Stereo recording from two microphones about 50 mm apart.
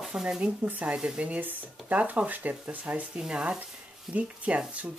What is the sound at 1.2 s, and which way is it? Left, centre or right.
Speech, right.